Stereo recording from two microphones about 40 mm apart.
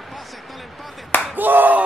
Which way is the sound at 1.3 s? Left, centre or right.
Right.